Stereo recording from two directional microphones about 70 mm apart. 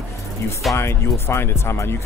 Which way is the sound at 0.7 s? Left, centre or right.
Left.